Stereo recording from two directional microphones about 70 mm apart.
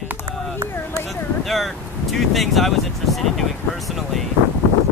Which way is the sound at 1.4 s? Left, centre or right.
Centre.